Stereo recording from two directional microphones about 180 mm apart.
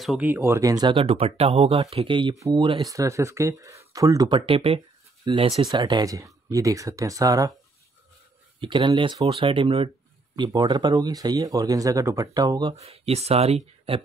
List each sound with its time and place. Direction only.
0.0 s speech: 5° right (ahead or behind)
4.4 s speech: 30° right (ahead or behind)
8.5 s speech: 25° right (ahead or behind)
12.7 s speech: 35° right (ahead or behind)